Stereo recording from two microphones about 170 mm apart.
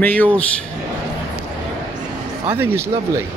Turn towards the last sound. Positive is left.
turn(degrees=-15)  # may be behind; listen again after turning